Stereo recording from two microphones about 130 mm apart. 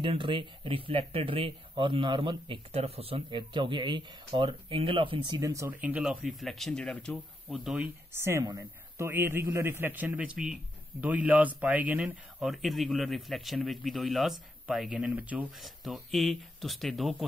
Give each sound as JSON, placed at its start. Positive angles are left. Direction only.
{"t": 0.0, "sound": "speech", "side_deg": -40}
{"t": 5.7, "sound": "speech", "side_deg": -10}
{"t": 7.4, "sound": "speech", "side_deg": -5}
{"t": 8.1, "sound": "a man's voice", "side_deg": -20}
{"t": 15.6, "sound": "speech", "side_deg": 0}